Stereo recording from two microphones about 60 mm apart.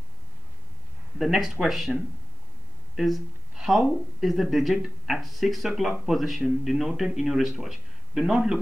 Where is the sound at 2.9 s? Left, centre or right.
Centre.